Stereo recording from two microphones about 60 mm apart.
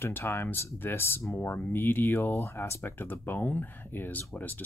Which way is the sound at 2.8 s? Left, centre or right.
Left.